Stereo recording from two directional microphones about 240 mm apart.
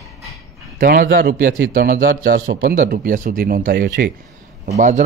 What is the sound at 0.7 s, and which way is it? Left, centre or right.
Speech, right.